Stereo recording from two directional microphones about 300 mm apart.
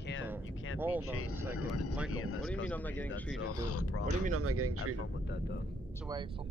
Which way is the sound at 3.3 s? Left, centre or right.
Left.